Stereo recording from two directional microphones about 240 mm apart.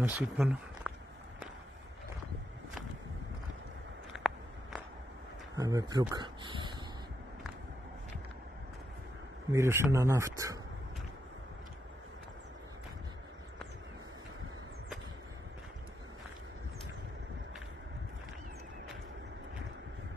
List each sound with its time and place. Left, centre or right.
0.0 s speech: centre
4.1 s walk: centre
5.6 s speech: centre
9.5 s speech: centre